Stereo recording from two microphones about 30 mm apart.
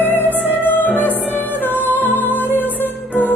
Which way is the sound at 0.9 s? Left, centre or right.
Left.